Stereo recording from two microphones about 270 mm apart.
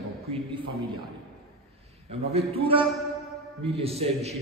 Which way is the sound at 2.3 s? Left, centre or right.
Right.